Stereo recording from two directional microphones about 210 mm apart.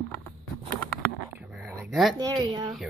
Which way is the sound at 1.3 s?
10° right (ahead or behind).